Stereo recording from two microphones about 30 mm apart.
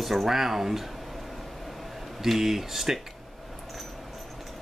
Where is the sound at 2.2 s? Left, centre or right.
Centre.